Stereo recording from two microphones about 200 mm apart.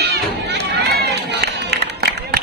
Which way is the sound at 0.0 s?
60° right (ahead or behind).